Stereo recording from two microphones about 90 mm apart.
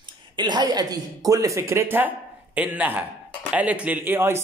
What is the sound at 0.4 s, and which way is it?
A man's voice, 55° right (ahead or behind).